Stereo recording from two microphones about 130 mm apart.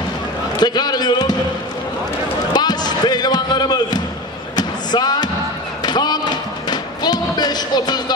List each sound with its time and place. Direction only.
0.6 s basketball bounce: 30° left (ahead or behind)
2.5 s basketball bounce: 35° left (ahead or behind)
5.8 s music: 30° left (ahead or behind)